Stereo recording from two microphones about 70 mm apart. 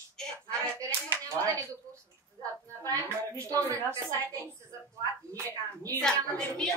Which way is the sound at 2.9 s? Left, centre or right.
Right.